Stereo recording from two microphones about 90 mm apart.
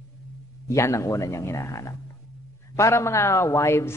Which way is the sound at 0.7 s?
35° left (ahead or behind).